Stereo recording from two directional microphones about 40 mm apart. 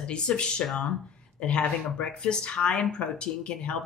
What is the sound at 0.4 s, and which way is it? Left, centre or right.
Speech, left.